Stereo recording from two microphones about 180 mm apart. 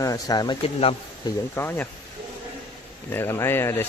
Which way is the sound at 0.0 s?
20° left (ahead or behind).